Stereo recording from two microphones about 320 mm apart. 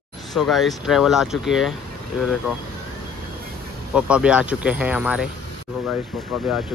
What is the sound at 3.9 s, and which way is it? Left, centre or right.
Speech, centre.